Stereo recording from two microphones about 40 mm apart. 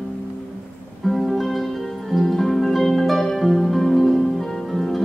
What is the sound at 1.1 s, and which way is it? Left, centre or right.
Music, centre.